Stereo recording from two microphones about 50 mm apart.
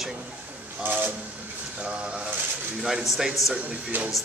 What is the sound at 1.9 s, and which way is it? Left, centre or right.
A man's voice, centre.